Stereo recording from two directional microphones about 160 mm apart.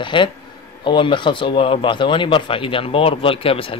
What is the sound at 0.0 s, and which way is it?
Speech, 30° left (ahead or behind).